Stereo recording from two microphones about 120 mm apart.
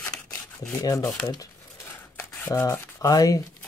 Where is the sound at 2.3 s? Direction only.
20° left (ahead or behind).